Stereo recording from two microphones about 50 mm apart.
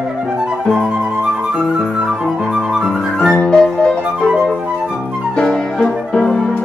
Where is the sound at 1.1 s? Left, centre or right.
Centre.